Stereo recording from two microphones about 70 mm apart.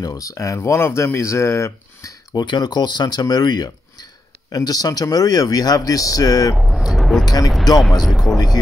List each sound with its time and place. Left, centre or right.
0.0 s speech: left
2.3 s speech: left
6.6 s vehicle: centre
7.2 s speech: left
8.0 s a man's voice: centre